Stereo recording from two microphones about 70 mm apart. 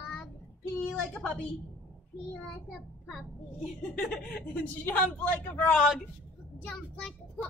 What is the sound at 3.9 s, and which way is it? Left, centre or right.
Speech, centre.